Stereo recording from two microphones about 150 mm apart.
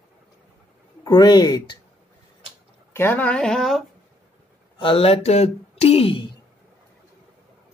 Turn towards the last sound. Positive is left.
turn(degrees=35)  # may be behind; listen again after turning